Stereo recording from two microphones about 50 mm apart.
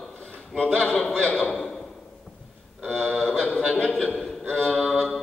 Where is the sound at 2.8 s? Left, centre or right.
Left.